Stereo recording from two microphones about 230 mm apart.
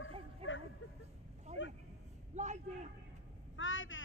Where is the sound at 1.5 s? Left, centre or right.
Right.